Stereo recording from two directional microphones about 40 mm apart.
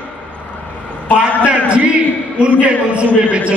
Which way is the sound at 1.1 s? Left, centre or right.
Right.